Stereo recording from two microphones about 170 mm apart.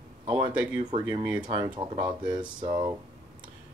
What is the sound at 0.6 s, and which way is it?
Speech, 30° right (ahead or behind).